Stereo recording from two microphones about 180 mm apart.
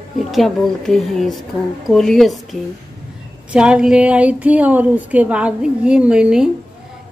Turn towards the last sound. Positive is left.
turn(degrees=-5)  # may be behind; listen again after turning